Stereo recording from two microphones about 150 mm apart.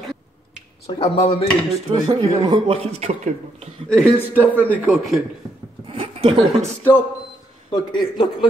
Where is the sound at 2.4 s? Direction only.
35° right (ahead or behind).